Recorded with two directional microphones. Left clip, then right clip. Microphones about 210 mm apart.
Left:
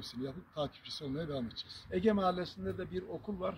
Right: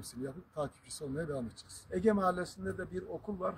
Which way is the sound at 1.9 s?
Centre (ahead or behind).